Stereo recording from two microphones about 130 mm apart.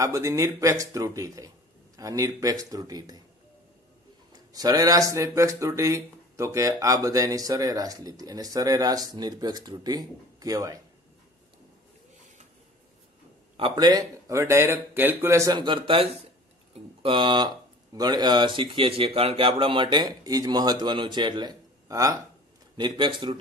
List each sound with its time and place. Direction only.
0.0 s speech: 25° right (ahead or behind)
4.5 s speech: 30° right (ahead or behind)
13.6 s speech: 35° right (ahead or behind)
15.5 s speech: 40° right (ahead or behind)
22.8 s speech: 35° right (ahead or behind)